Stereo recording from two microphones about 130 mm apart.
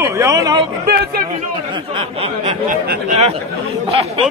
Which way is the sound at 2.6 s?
70° right (ahead or behind).